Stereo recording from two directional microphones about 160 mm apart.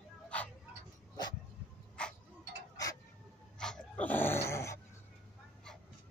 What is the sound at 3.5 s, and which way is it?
Dog, 5° left (ahead or behind).